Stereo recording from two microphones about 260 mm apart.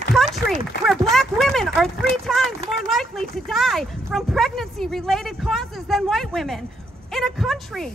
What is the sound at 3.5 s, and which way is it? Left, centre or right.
A woman's voice, centre.